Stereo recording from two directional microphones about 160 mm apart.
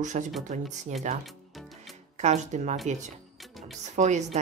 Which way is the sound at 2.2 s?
45° right (ahead or behind).